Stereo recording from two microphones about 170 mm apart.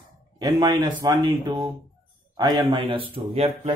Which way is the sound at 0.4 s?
20° right (ahead or behind).